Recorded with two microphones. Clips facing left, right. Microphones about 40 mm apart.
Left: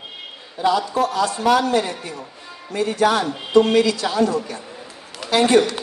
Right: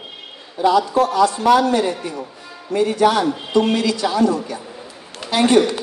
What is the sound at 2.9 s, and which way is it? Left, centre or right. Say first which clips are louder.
Speech: right 1 dB; left.